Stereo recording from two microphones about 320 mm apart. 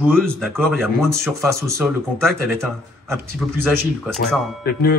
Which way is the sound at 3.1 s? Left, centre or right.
Centre.